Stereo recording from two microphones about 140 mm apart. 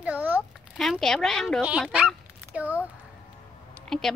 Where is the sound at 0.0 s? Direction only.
10° right (ahead or behind).